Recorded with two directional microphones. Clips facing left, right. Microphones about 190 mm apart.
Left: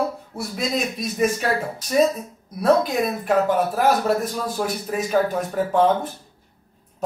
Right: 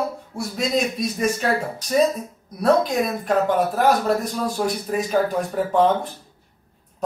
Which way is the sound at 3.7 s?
5° left (ahead or behind).